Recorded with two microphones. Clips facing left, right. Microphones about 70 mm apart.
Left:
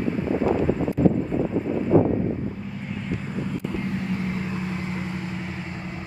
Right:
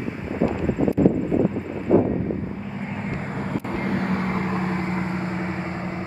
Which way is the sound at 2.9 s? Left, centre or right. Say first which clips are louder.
Even; right.